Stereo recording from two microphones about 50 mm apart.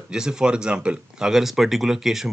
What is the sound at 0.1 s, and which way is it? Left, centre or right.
Speech, centre.